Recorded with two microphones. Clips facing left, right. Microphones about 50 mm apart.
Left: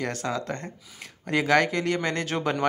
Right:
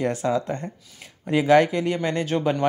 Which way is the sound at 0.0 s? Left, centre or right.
Centre.